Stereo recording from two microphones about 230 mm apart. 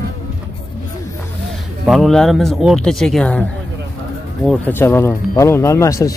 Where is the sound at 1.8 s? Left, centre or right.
Centre.